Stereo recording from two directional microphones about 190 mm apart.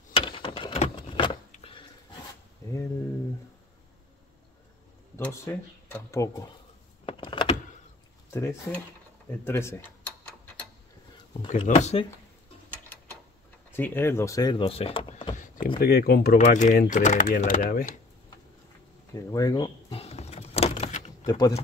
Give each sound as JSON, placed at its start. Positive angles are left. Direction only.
{"t": 0.1, "sound": "a sound", "side_deg": 30}
{"t": 2.6, "sound": "a sound", "side_deg": 15}
{"t": 5.1, "sound": "speech", "side_deg": 15}
{"t": 7.1, "sound": "power windows", "side_deg": 25}
{"t": 8.3, "sound": "speech", "side_deg": 15}
{"t": 9.4, "sound": "a sound", "side_deg": 10}
{"t": 11.4, "sound": "speech", "side_deg": 35}
{"t": 12.7, "sound": "a sound", "side_deg": 10}
{"t": 13.7, "sound": "speech", "side_deg": 10}
{"t": 15.8, "sound": "speech", "side_deg": 55}
{"t": 16.4, "sound": "speech", "side_deg": 40}
{"t": 19.3, "sound": "door", "side_deg": 20}
{"t": 21.3, "sound": "speech", "side_deg": 20}